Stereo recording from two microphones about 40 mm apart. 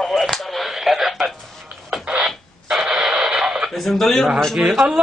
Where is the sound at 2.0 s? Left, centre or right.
Right.